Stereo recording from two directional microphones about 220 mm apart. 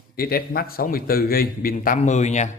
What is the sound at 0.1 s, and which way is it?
Speech, 45° left (ahead or behind).